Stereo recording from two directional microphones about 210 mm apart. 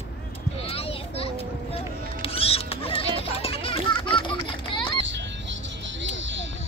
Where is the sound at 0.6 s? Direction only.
25° left (ahead or behind).